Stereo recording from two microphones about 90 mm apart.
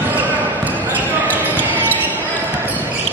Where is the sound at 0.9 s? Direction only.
20° right (ahead or behind).